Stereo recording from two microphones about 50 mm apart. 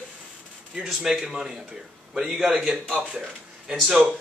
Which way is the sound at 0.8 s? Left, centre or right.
Centre.